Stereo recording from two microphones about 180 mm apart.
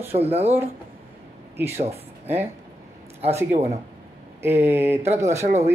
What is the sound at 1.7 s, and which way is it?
Speech, 35° right (ahead or behind).